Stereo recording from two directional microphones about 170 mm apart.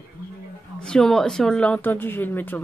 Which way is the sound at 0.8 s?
5° left (ahead or behind).